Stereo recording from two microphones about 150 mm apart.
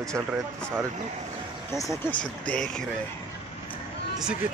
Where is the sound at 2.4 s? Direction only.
5° left (ahead or behind).